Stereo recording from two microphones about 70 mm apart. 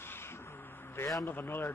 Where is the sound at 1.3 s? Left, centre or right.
Left.